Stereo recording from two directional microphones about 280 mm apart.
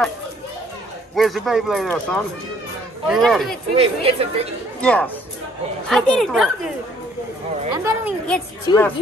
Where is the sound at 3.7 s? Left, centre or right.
Right.